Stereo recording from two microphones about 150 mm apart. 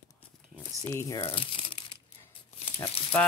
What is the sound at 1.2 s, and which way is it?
Crumpling, 40° left (ahead or behind).